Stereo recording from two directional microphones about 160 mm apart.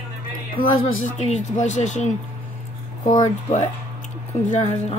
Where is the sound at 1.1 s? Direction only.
45° left (ahead or behind).